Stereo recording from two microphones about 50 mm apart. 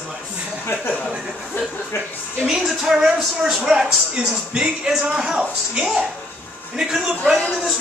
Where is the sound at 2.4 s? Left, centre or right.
Centre.